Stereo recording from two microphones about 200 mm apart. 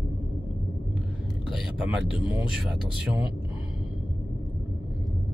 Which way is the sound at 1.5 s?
5° right (ahead or behind).